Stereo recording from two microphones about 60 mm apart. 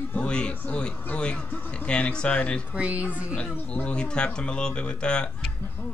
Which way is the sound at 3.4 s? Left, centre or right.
Left.